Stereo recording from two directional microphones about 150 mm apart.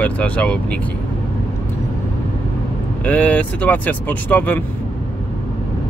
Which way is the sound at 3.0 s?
10° left (ahead or behind).